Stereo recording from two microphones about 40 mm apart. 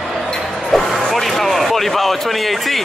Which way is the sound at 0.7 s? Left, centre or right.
Centre.